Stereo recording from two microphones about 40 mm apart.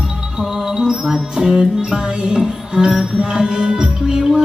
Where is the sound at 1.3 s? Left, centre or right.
Centre.